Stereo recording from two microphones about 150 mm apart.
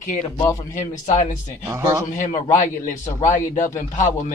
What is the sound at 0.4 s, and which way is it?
Speech, 20° left (ahead or behind).